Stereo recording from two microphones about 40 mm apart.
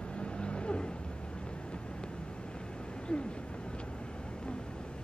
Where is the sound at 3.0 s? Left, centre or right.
Left.